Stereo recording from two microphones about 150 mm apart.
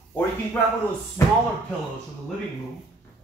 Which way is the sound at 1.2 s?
15° left (ahead or behind).